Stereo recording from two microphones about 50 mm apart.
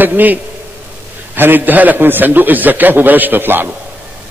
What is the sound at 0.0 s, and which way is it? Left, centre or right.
A man's voice, right.